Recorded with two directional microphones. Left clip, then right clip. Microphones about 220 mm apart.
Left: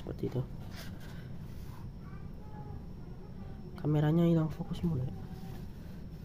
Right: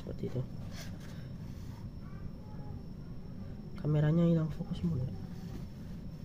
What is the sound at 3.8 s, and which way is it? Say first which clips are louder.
Speech: left 2 dB; 15° left (ahead or behind).